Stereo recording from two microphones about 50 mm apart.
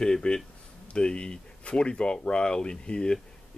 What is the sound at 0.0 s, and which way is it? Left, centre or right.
Speech, centre.